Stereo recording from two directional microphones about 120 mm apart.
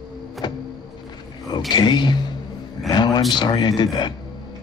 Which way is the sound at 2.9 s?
35° left (ahead or behind).